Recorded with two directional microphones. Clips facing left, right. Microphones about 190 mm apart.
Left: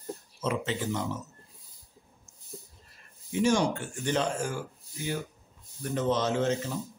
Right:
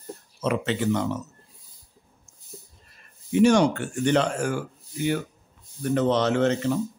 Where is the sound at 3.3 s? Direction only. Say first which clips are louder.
Right 7 dB; 65° right (ahead or behind).